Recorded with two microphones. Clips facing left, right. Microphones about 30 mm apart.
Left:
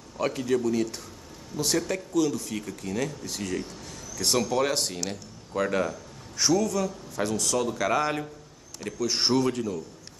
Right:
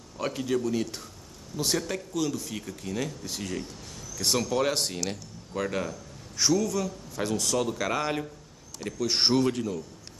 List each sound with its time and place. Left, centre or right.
0.2 s a man's voice: centre
9.0 s speech: right
9.3 s speech: centre